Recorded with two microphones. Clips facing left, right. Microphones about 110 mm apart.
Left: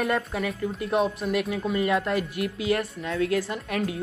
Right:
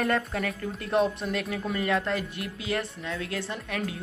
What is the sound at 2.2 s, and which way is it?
Speech, 30° right (ahead or behind).